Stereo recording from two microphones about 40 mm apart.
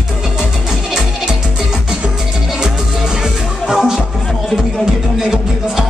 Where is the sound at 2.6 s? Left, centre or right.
Centre.